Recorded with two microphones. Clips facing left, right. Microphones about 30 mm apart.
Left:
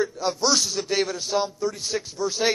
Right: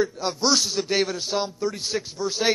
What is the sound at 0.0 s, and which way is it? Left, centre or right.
A man's voice, centre.